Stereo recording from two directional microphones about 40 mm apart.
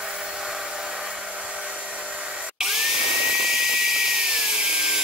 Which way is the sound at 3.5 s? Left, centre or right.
Centre.